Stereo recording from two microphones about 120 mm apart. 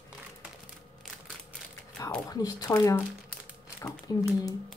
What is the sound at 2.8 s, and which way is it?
Speech, 25° left (ahead or behind).